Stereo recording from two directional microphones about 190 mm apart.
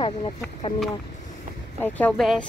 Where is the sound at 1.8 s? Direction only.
10° left (ahead or behind).